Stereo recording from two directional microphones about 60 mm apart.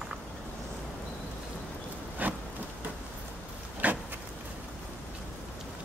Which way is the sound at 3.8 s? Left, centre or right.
Right.